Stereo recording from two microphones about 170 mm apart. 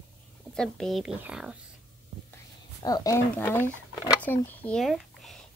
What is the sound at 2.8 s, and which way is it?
A child's voice, 20° left (ahead or behind).